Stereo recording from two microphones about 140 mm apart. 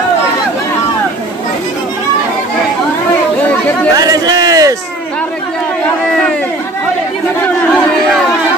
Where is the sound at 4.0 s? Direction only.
25° right (ahead or behind).